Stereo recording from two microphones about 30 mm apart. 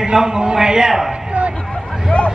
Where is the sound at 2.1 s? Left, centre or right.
Left.